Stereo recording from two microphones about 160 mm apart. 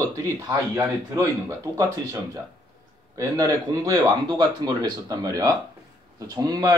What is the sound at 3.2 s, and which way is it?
Speech, 20° right (ahead or behind).